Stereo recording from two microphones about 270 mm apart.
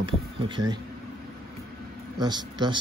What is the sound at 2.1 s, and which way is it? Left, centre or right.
Speech, centre.